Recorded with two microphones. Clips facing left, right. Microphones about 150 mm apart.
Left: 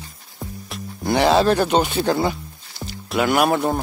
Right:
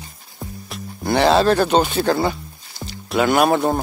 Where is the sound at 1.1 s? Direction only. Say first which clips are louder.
Right 1 dB; 10° left (ahead or behind).